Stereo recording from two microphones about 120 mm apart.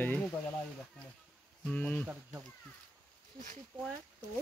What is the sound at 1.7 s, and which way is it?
Speech, 10° left (ahead or behind).